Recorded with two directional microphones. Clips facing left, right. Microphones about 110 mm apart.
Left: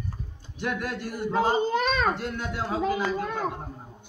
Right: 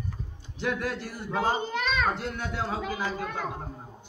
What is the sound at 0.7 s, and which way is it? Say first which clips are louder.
A man's voice: even; 10° left (ahead or behind).